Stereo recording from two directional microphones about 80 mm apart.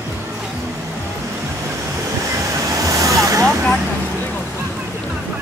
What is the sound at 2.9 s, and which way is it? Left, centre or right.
Vehicle, right.